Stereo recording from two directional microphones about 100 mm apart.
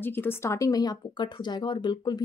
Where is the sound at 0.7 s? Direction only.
40° left (ahead or behind).